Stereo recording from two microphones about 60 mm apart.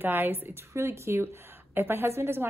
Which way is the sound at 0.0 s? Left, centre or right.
Right.